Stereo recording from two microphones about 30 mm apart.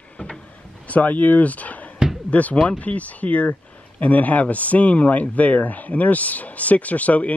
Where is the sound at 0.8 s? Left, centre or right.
Left.